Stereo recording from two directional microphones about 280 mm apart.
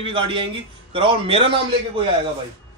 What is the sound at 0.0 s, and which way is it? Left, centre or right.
Speech, centre.